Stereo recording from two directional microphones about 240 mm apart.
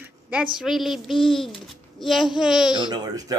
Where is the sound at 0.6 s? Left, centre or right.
Centre.